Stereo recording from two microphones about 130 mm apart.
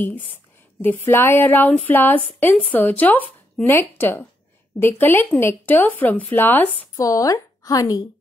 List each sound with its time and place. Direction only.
0.0 s a woman's voice: 15° left (ahead or behind)
7.0 s a woman's voice: 25° left (ahead or behind)